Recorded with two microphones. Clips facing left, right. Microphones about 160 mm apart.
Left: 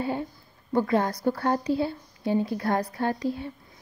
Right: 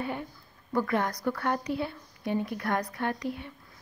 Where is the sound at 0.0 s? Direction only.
30° left (ahead or behind).